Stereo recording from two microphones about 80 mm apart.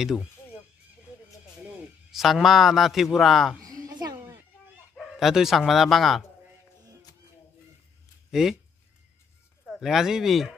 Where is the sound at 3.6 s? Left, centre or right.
Right.